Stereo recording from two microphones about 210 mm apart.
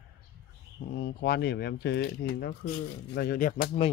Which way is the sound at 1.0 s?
50° left (ahead or behind).